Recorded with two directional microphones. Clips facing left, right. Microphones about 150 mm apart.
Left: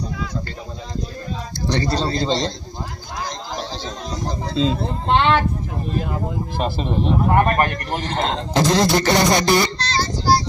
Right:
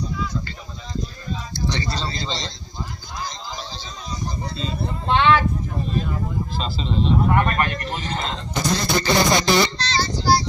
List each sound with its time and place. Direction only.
1.7 s a man's voice: 55° left (ahead or behind)
3.2 s a sound: 70° left (ahead or behind)
4.6 s speech: 90° left
6.6 s a man's voice: 55° left (ahead or behind)
7.2 s speech: 45° left (ahead or behind)
8.2 s speech: 90° left; by 10.3 s 50° left (ahead or behind)